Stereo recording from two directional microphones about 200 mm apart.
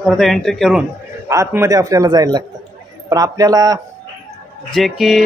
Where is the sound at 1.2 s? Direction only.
15° right (ahead or behind).